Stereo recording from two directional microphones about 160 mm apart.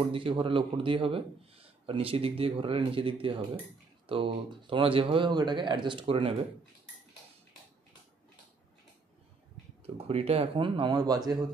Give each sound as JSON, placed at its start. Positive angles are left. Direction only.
{"t": 0.0, "sound": "a man's voice", "side_deg": -35}
{"t": 9.8, "sound": "a man's voice", "side_deg": -40}